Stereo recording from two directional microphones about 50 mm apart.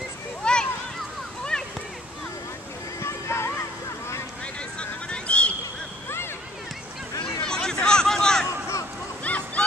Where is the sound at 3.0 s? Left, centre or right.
Left.